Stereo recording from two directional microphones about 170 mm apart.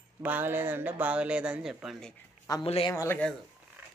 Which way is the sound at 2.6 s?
35° left (ahead or behind).